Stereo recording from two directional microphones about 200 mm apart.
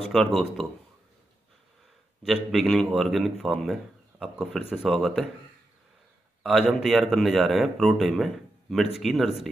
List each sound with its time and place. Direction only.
0.1 s a man's voice: centre (ahead or behind)
2.2 s a man's voice: centre (ahead or behind)
6.4 s a man's voice: centre (ahead or behind)